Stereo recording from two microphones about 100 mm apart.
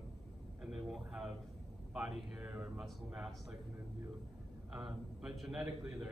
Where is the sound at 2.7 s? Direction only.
5° right (ahead or behind).